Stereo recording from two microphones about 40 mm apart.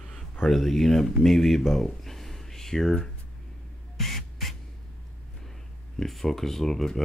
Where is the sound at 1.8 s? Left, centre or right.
Centre.